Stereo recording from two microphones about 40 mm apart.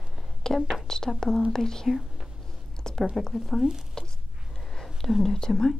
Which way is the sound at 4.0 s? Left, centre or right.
Centre.